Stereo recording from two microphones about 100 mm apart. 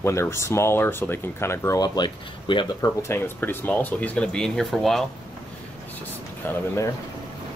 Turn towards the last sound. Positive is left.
turn(degrees=20)  # may be behind; listen again after turning